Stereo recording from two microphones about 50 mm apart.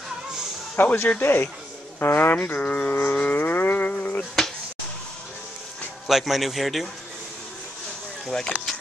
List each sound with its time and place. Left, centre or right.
0.7 s speech: left
2.9 s speech: left
3.3 s a sound: left
6.0 s a man's voice: centre
8.3 s speech: centre